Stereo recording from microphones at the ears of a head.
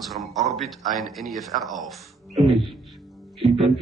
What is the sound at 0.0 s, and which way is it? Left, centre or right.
A man's voice, right.